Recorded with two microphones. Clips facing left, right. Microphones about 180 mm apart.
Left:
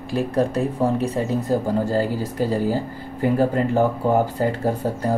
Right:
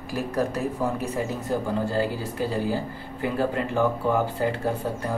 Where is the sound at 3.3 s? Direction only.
40° left (ahead or behind).